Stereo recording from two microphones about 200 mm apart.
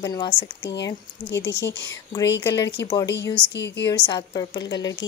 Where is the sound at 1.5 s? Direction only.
55° left (ahead or behind).